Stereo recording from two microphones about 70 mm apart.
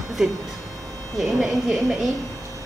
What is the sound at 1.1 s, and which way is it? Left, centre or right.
Speech, centre.